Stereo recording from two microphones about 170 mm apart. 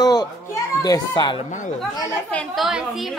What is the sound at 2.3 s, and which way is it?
Speech, 10° left (ahead or behind).